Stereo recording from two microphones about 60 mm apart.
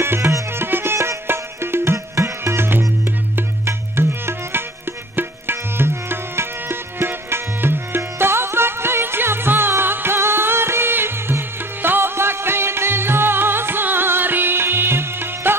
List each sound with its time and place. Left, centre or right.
0.0 s music: right
5.1 s tabla: right